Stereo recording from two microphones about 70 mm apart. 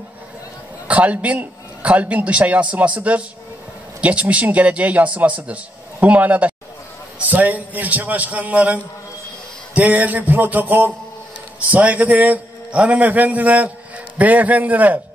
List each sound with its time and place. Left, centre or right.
0.8 s a man's voice: right